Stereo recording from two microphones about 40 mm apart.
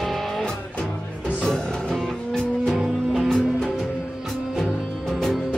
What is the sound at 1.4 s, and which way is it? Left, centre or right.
Music, centre.